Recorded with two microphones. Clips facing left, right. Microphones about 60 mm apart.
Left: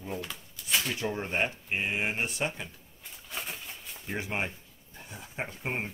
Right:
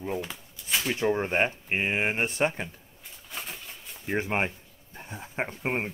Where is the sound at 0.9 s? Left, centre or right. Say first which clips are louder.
Right 6 dB; right.